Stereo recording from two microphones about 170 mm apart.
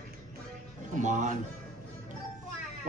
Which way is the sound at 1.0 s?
45° right (ahead or behind).